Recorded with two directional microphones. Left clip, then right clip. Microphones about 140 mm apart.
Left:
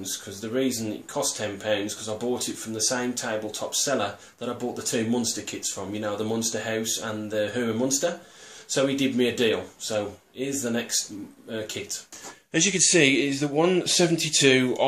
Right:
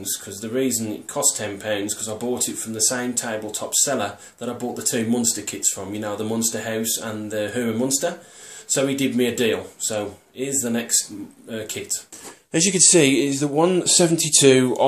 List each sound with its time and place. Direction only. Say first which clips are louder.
0.0 s speech: right 3 dB; centre (ahead or behind)
12.5 s speech: right 4 dB; 35° right (ahead or behind)